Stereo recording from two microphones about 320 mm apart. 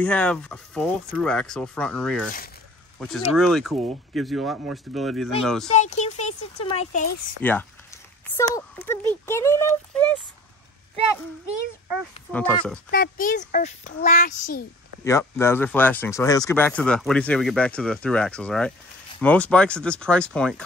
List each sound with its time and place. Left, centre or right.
0.0 s speech: centre
5.8 s a child's voice: left
7.4 s speech: centre
12.3 s speech: centre
12.9 s a child's voice: left
15.0 s speech: centre